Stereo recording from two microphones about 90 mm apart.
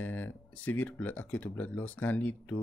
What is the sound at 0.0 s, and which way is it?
Speech, 20° left (ahead or behind).